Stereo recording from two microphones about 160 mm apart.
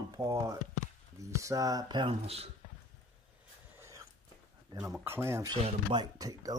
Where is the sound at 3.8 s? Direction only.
20° right (ahead or behind).